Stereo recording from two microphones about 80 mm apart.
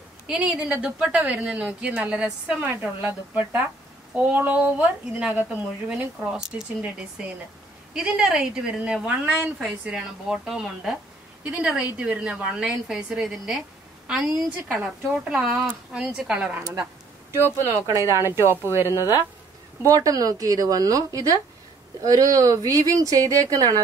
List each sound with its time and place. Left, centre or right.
0.3 s a woman's voice: centre
17.3 s speech: right
19.8 s speech: right